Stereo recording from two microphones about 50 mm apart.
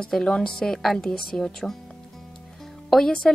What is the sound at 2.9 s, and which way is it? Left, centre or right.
Speech, centre.